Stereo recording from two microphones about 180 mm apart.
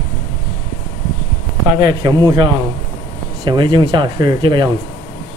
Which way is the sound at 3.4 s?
25° right (ahead or behind).